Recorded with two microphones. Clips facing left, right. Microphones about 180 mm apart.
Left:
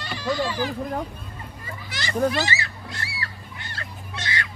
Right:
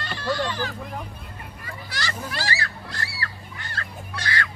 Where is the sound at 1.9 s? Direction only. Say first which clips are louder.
Left 10 dB; 20° left (ahead or behind).